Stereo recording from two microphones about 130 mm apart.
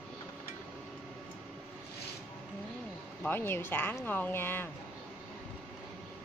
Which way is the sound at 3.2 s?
15° left (ahead or behind).